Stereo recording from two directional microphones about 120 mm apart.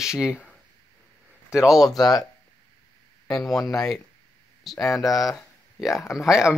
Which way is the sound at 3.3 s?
5° left (ahead or behind).